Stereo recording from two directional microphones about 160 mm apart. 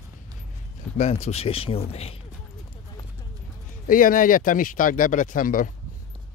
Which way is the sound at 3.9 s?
60° left (ahead or behind).